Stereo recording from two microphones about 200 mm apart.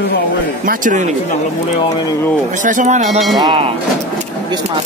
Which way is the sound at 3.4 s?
25° right (ahead or behind).